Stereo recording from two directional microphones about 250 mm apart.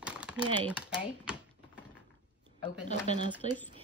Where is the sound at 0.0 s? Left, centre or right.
Centre.